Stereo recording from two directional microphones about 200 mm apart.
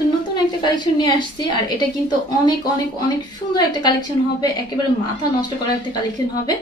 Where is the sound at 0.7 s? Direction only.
20° left (ahead or behind).